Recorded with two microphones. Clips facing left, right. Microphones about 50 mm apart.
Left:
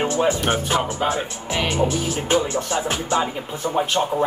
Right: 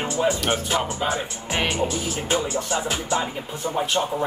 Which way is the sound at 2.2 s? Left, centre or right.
Left.